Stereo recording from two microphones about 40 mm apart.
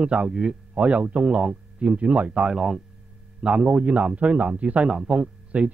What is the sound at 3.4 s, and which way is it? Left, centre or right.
A man's voice, right.